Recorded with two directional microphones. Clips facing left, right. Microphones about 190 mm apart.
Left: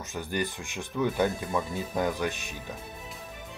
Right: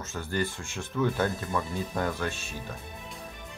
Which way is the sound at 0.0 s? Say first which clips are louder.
Even; 15° left (ahead or behind).